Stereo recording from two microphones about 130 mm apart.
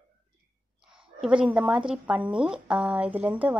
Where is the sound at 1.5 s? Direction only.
10° right (ahead or behind).